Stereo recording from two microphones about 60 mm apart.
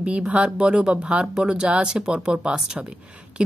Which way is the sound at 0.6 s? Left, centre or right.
Centre.